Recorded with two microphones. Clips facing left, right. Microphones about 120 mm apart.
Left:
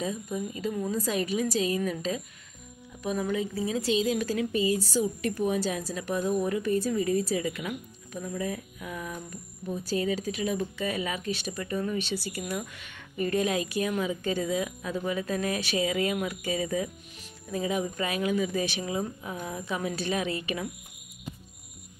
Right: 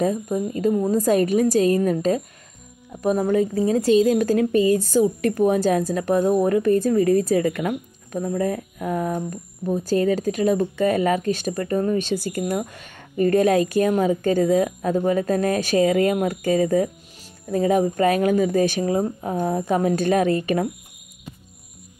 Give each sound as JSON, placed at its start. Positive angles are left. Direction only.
{"t": 0.0, "sound": "speech", "side_deg": -50}